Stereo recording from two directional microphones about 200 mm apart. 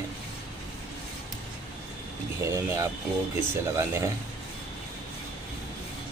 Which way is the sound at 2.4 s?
15° right (ahead or behind).